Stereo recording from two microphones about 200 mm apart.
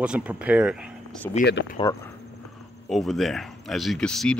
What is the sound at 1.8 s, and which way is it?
Speech, 25° left (ahead or behind).